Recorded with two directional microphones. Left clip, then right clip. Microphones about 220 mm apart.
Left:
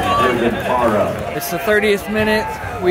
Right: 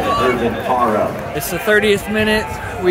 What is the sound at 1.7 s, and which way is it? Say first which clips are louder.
Speech: right 2 dB; 10° right (ahead or behind).